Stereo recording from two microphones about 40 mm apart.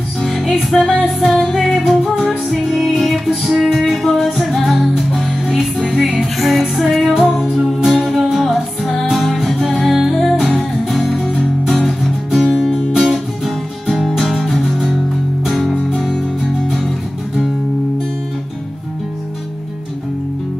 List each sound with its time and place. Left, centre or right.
0.2 s music: centre
6.3 s music: centre
8.4 s music: centre
12.3 s music: centre